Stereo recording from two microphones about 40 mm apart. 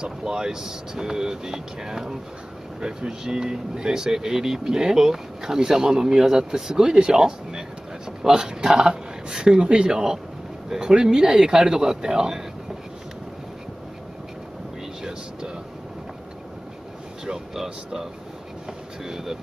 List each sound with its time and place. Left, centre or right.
0.0 s speech: centre
17.3 s speech: centre
19.0 s speech: centre